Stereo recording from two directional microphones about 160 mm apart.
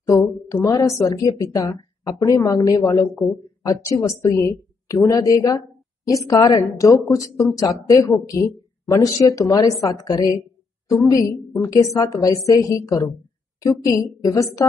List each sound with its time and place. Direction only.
0.0 s a woman's voice: 20° left (ahead or behind)